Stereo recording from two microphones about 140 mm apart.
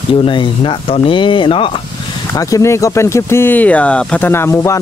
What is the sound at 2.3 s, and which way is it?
Speech, 25° left (ahead or behind).